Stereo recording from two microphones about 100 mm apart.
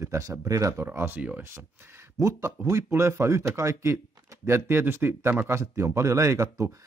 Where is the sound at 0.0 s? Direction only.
30° right (ahead or behind).